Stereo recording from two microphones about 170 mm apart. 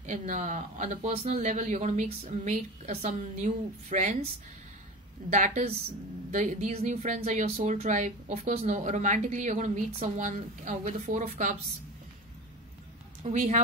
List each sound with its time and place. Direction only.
0.0 s speech: 45° right (ahead or behind)
5.3 s speech: 50° right (ahead or behind)
13.2 s speech: 45° right (ahead or behind)